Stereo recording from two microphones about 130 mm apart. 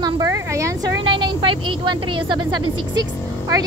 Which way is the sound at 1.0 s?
40° right (ahead or behind).